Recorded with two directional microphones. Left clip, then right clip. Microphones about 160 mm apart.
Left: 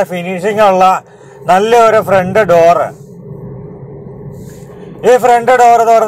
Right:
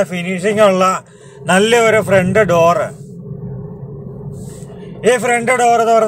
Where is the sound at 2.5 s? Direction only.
5° right (ahead or behind).